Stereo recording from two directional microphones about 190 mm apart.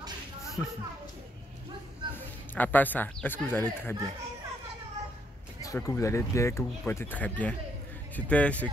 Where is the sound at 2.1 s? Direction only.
10° left (ahead or behind).